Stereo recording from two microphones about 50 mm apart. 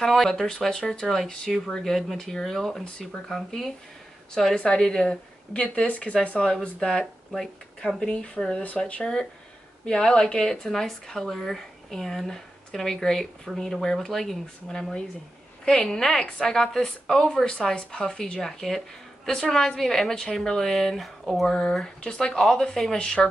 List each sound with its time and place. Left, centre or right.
0.0 s speech: centre
1.8 s speech: centre
2.8 s speech: centre
3.3 s speech: centre
4.6 s speech: centre
8.6 s speech: left
9.0 s speech: centre
22.4 s speech: centre
22.9 s speech: centre